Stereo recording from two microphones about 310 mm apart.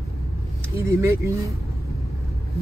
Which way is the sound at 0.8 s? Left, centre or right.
Centre.